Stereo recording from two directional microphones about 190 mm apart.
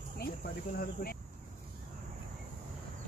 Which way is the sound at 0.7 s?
50° left (ahead or behind).